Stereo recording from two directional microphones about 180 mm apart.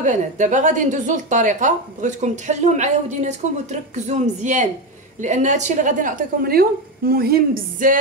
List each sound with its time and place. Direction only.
0.0 s a woman's voice: 45° right (ahead or behind)